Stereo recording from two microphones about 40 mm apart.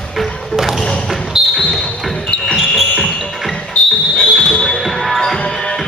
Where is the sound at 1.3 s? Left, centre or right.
Centre.